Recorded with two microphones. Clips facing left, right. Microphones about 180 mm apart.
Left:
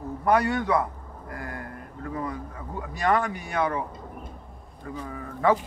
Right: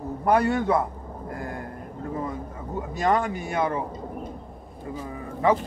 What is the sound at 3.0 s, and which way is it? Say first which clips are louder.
Speech: right 1 dB; 25° right (ahead or behind).